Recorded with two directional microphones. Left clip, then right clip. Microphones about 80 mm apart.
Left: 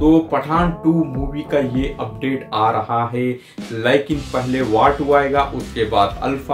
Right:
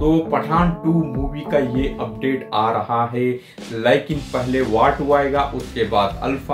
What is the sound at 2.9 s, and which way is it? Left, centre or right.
Speech, left.